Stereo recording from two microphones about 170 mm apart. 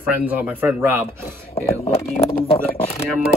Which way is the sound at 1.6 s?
35° left (ahead or behind).